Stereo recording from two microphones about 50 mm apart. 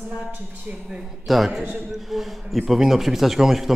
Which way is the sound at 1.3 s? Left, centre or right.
Centre.